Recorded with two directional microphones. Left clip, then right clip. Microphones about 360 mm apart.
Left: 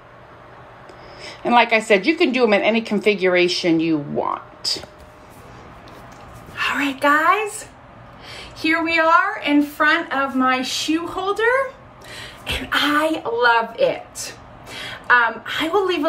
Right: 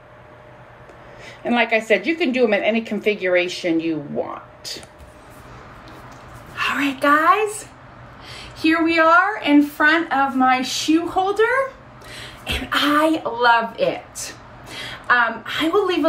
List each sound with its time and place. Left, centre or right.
1.2 s a woman's voice: centre
6.5 s a woman's voice: centre